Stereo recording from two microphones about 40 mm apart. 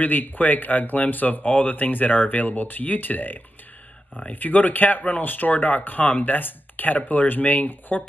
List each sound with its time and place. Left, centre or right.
0.0 s speech: left